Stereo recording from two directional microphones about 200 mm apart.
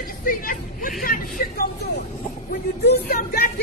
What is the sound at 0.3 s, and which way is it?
Speech, 45° left (ahead or behind).